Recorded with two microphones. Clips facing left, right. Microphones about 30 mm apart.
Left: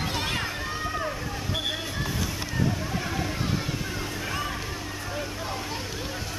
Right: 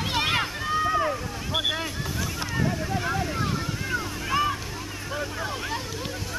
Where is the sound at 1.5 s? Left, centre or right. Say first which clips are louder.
Right 5 dB; right.